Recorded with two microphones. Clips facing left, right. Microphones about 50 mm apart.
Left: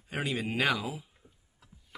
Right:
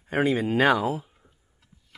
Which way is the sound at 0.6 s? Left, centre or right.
Right.